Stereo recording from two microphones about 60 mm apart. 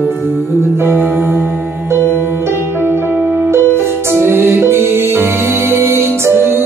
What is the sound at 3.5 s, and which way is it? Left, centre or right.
Music, right.